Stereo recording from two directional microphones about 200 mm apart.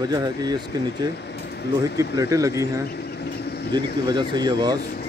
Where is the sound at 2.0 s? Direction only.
15° right (ahead or behind).